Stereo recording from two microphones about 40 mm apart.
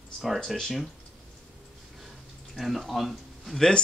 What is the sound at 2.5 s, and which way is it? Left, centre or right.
Speech, centre.